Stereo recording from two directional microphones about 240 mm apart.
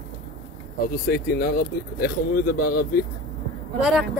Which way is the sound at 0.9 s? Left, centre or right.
Left.